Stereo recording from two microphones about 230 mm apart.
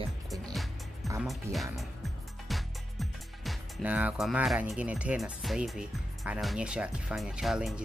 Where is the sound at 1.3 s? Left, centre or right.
Centre.